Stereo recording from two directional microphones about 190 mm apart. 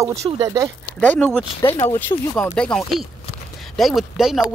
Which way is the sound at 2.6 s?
5° left (ahead or behind).